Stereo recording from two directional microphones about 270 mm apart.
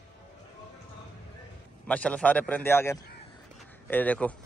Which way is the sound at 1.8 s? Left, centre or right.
Centre.